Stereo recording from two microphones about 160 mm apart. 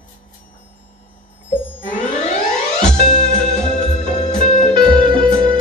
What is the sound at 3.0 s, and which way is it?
Music, 45° left (ahead or behind).